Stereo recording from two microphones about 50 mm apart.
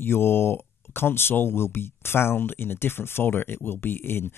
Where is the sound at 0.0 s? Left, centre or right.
Left.